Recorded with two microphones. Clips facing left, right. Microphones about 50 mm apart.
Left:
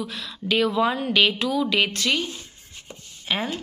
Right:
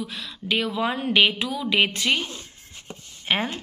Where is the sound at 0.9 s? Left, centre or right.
Right.